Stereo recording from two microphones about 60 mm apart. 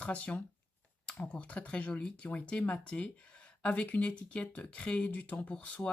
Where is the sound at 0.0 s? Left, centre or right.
Left.